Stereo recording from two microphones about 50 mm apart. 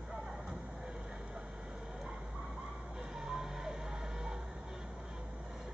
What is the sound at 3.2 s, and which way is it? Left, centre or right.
Vehicle, centre.